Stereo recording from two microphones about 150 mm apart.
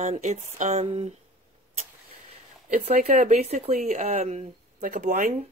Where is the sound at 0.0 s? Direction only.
50° right (ahead or behind).